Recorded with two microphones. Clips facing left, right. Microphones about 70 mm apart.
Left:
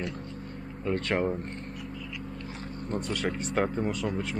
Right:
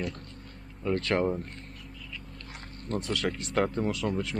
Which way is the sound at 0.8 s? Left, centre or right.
Centre.